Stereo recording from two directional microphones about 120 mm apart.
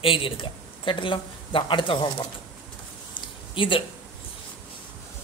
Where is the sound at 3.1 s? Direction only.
45° left (ahead or behind).